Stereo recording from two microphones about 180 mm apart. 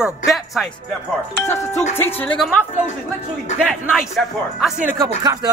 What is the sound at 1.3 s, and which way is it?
Speech, 15° left (ahead or behind).